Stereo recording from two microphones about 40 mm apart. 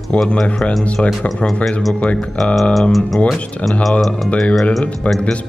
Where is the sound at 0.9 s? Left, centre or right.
Left.